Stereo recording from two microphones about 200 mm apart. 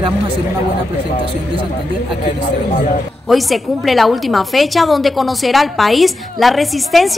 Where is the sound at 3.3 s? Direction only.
Centre (ahead or behind).